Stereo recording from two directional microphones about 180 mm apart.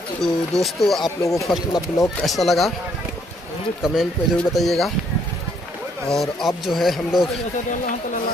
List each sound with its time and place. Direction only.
0.2 s speech: centre (ahead or behind)
1.0 s speech: 15° left (ahead or behind)
2.2 s speech: centre (ahead or behind)
3.8 s speech: centre (ahead or behind)
6.0 s speech: centre (ahead or behind)